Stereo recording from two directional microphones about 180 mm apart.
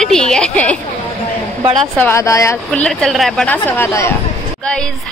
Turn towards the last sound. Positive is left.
turn(degrees=5)  # may be behind; listen again after turning